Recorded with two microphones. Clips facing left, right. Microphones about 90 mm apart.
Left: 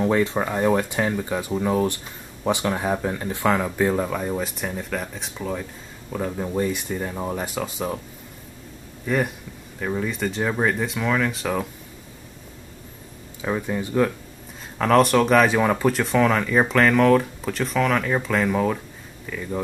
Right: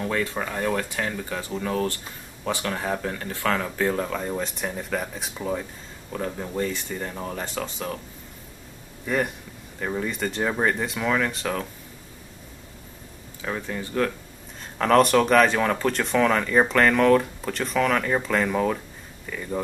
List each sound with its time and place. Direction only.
0.0 s speech: 25° left (ahead or behind); by 5.7 s 5° right (ahead or behind)
6.1 s speech: 5° left (ahead or behind)
9.0 s speech: centre (ahead or behind)
13.4 s speech: 15° left (ahead or behind)
14.8 s speech: centre (ahead or behind)